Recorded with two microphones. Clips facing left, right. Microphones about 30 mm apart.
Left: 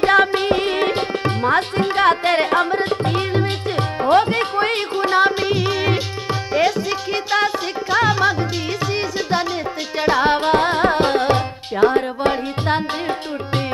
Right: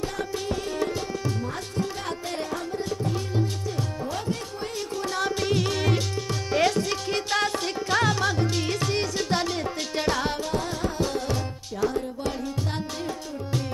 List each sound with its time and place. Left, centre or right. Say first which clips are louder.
0.0 s tabla: left 15 dB; left
6.5 s music: left 4 dB; centre
10.3 s music: left 12 dB; left